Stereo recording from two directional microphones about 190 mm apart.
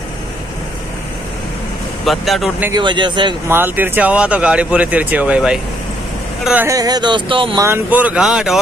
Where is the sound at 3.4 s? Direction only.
10° right (ahead or behind); by 7.6 s 25° right (ahead or behind).